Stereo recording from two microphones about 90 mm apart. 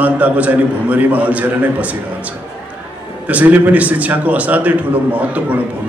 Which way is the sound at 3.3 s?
15° right (ahead or behind).